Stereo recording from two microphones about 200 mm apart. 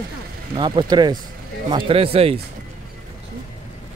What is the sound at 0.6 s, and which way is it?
Speech, 20° right (ahead or behind).